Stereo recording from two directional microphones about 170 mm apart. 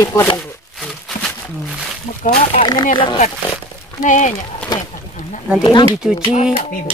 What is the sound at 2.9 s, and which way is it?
Speech, 30° left (ahead or behind).